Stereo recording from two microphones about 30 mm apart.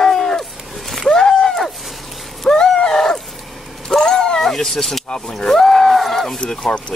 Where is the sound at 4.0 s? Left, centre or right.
Centre.